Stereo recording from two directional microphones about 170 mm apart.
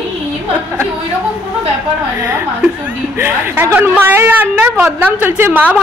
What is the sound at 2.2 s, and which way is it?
A woman's voice, 15° right (ahead or behind).